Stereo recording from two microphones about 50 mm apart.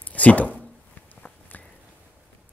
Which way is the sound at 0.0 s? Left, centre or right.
Left.